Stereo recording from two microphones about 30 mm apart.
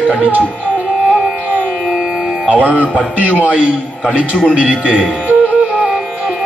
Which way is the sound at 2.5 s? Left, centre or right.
Right.